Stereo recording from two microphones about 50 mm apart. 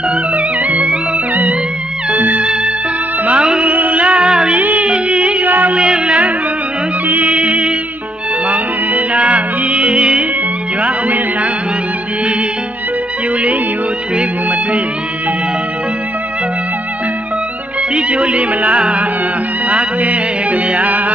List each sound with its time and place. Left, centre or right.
0.1 s music: right
2.0 s music: right
3.3 s music: centre
3.7 s music: right
4.1 s music: centre
4.6 s music: right
4.8 s music: right
5.5 s music: right
5.8 s music: centre
9.1 s music: right
17.9 s music: right